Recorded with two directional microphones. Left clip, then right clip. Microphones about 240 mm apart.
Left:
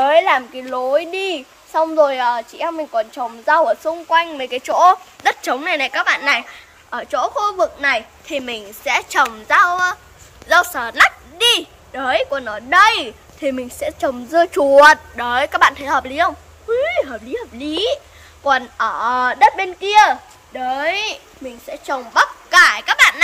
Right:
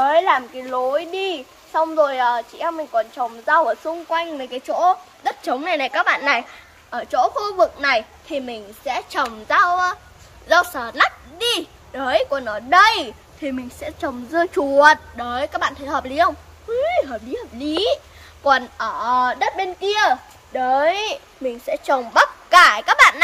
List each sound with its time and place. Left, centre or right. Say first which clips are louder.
0.0 s a woman's voice: left 3 dB; left
4.1 s a woman's voice: left 8 dB; centre
6.9 s a woman's voice: right 1 dB; centre
13.4 s speech: left 7 dB; left
14.7 s a woman's voice: left 4 dB; centre
20.5 s a woman's voice: right 2 dB; right
21.6 s speech: right 3 dB; right
22.9 s speech: even; centre